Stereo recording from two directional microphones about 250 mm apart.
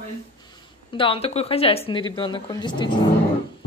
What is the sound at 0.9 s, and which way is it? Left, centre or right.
A woman's voice, left.